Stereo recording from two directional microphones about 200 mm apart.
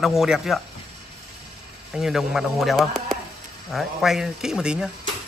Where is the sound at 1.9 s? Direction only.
Centre (ahead or behind).